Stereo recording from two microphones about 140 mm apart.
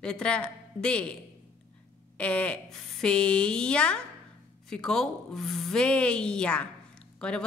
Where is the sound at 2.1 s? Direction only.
10° left (ahead or behind).